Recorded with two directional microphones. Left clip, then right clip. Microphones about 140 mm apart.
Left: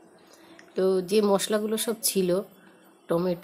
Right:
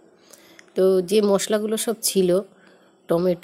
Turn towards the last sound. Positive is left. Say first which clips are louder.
# right 6 dB
turn(degrees=-45)  # may be behind; listen again after turning